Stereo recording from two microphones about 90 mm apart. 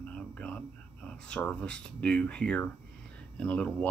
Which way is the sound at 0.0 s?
15° left (ahead or behind).